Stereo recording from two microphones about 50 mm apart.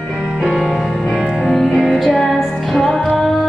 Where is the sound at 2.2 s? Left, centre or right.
Centre.